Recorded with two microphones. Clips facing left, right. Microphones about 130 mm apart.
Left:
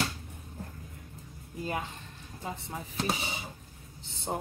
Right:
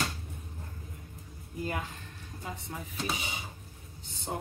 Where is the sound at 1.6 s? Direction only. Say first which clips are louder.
Left 1 dB; 25° left (ahead or behind).